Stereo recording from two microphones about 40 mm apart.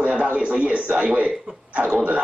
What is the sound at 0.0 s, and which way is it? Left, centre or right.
A man's voice, right.